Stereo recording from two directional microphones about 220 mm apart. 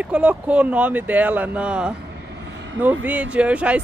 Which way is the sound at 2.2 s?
55° right (ahead or behind).